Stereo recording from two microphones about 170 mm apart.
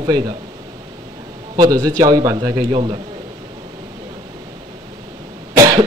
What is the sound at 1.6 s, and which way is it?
A man's voice, 20° right (ahead or behind).